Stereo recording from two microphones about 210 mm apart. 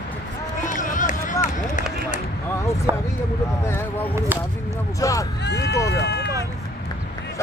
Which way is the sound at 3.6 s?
10° left (ahead or behind).